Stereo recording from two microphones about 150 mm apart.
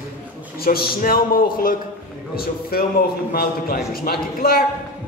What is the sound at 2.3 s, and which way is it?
Speech, 85° left.